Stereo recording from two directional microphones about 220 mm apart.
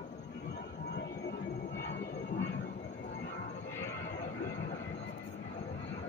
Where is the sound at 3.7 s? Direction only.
10° left (ahead or behind).